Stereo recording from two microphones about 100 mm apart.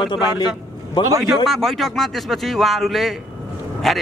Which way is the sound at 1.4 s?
Centre (ahead or behind).